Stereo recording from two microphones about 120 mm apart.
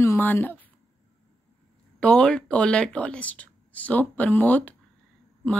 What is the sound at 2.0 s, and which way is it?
A woman's voice, 10° left (ahead or behind).